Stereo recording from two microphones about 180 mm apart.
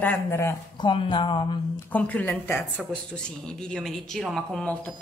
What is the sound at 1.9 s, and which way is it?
Speech, 10° left (ahead or behind).